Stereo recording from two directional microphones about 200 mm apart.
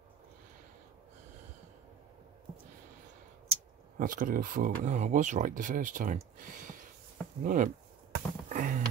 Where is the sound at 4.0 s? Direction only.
45° right (ahead or behind).